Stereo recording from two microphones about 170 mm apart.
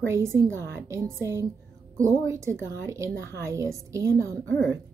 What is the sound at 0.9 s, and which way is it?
A woman's voice, 15° right (ahead or behind).